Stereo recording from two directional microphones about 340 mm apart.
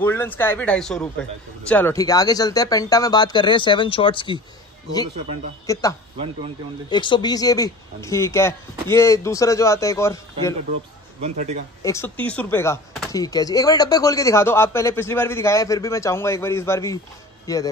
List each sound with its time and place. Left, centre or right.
0.0 s a man's voice: centre
5.7 s a man's voice: centre
11.1 s a man's voice: centre
11.8 s a man's voice: centre